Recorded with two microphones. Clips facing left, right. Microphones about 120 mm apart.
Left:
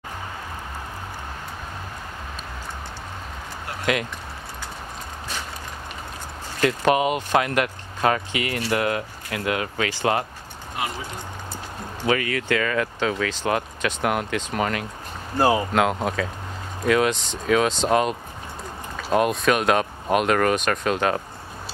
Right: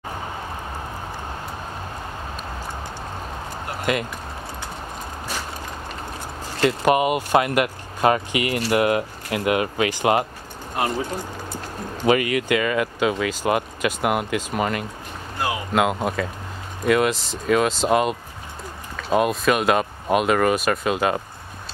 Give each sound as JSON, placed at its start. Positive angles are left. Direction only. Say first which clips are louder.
{"t": 3.9, "sound": "speech", "louder": "even", "side_deg": -5}
{"t": 6.6, "sound": "speech", "louder": "right 1 dB", "side_deg": -5}
{"t": 12.0, "sound": "speech", "louder": "right 4 dB", "side_deg": -15}
{"t": 15.3, "sound": "speech", "louder": "left 7 dB", "side_deg": 35}
{"t": 15.7, "sound": "speech", "louder": "right 1 dB", "side_deg": -5}